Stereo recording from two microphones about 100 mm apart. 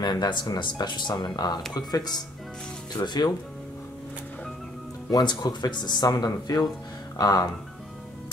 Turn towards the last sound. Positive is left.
turn(degrees=40)  # may be behind; listen again after turning